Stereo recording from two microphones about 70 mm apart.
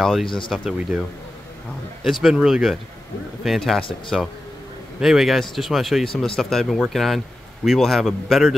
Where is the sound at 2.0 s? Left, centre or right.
Centre.